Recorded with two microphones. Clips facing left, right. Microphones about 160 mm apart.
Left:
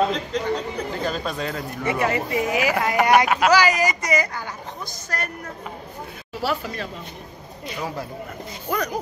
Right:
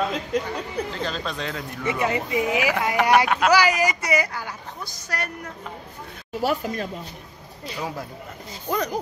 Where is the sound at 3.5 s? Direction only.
10° right (ahead or behind).